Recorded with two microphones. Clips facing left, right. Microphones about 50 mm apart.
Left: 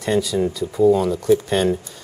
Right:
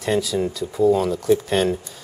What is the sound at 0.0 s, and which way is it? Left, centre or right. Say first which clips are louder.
Speech: left 2 dB; centre.